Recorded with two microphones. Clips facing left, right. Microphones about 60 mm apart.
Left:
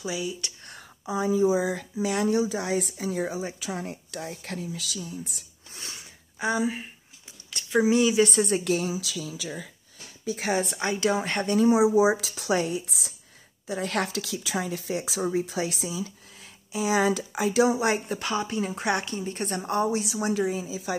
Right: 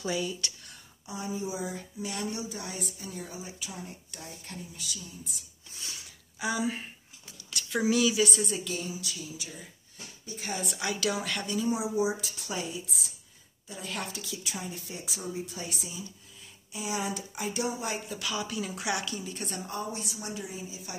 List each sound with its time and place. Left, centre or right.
0.0 s speech: centre
1.6 s speech: left
5.7 s wheeze: left
5.9 s a sound: left
7.7 s speech: left
10.3 s speech: left
10.6 s a woman's voice: left
11.4 s speech: left
11.7 s speech: left
13.7 s a woman's voice: left
17.9 s speech: left